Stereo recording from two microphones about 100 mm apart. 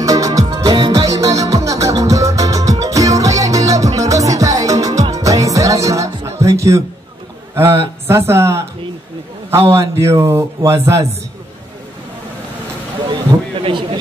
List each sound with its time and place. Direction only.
0.0 s music: 35° right (ahead or behind)
7.5 s a man's voice: 25° right (ahead or behind)
13.6 s a man's voice: 60° right (ahead or behind)